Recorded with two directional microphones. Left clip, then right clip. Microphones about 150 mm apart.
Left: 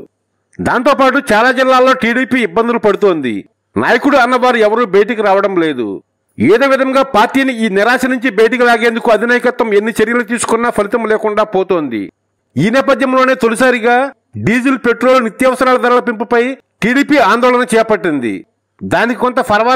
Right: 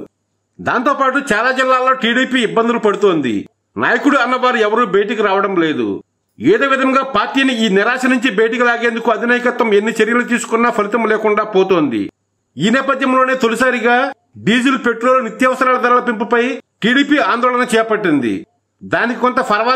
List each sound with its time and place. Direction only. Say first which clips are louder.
1.1 s a man's voice: left 4 dB; 55° left (ahead or behind)